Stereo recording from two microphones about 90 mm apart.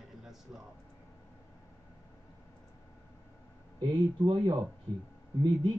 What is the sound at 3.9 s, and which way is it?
Speech, 65° right (ahead or behind).